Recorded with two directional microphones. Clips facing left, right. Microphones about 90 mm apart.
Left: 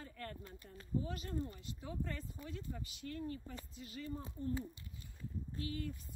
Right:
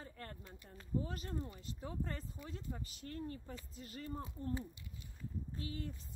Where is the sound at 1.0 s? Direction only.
35° right (ahead or behind).